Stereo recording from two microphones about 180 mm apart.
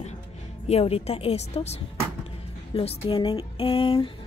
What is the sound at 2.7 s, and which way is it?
Speech, 30° left (ahead or behind).